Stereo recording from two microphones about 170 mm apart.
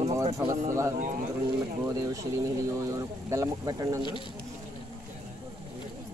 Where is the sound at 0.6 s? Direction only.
15° right (ahead or behind).